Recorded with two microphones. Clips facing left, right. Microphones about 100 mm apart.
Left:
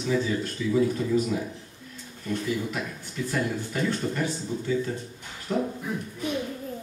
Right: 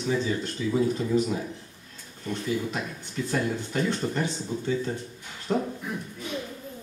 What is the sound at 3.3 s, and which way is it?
A man's voice, 25° right (ahead or behind).